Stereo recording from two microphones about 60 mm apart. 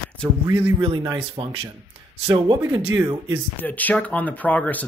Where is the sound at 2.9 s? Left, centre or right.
Right.